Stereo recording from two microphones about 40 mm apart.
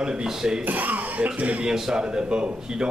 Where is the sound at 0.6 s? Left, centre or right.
Right.